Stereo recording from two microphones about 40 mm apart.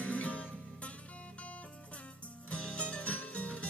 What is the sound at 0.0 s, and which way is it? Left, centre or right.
Music, left.